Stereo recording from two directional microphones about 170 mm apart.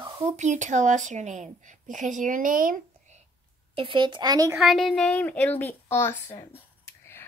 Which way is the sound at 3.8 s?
30° right (ahead or behind).